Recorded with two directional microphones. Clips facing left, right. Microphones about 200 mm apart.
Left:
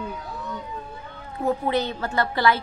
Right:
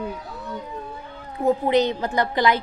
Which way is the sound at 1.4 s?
15° right (ahead or behind).